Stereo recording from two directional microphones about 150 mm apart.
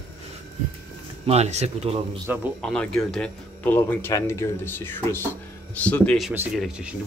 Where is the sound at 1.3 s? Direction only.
45° right (ahead or behind).